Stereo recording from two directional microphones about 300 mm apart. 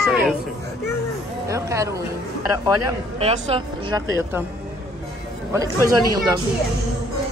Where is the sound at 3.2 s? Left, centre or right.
Centre.